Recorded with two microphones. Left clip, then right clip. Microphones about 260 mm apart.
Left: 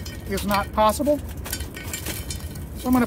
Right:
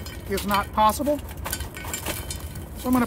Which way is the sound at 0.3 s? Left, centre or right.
Centre.